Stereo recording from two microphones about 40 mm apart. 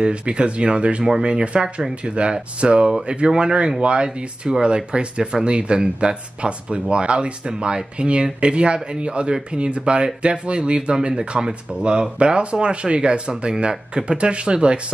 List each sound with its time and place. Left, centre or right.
0.0 s speech: right